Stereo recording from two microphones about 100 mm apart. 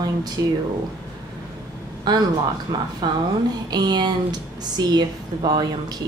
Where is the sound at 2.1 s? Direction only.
40° right (ahead or behind).